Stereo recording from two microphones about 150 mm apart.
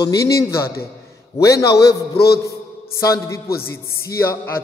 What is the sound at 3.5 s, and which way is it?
Speech, 90° left.